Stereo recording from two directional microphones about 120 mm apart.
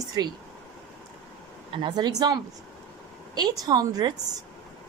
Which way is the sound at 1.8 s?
35° right (ahead or behind).